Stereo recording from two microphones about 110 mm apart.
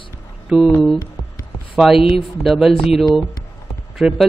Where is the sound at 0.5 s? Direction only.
10° right (ahead or behind).